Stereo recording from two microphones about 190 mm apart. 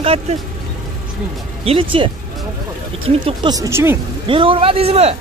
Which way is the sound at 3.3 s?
20° right (ahead or behind).